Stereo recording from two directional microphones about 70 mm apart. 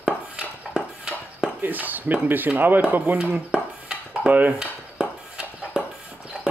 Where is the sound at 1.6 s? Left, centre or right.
Right.